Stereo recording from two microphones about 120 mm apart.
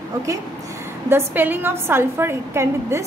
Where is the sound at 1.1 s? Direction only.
20° right (ahead or behind).